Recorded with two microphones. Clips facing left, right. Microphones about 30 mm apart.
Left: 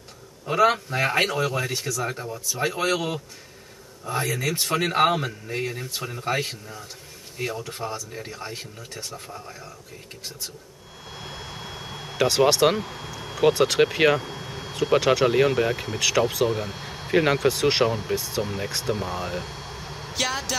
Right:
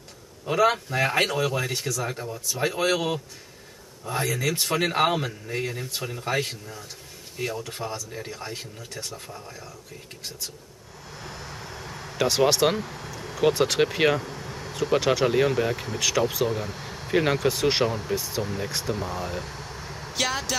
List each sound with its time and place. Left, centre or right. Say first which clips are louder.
0.5 s speech: left 1 dB; centre
11.1 s vehicle: left 1 dB; left
12.2 s speech: left 2 dB; centre
12.7 s speech: left 1 dB; centre
18.4 s speech: left 1 dB; centre
18.7 s speech: left 2 dB; centre
18.9 s vehicle: left 1 dB; centre
20.2 s speech: even; centre